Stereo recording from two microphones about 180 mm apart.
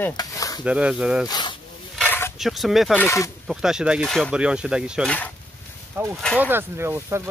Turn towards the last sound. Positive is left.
turn(degrees=-15)  # may be behind; listen again after turning